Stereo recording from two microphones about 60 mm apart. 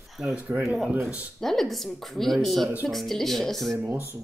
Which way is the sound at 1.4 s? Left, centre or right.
Centre.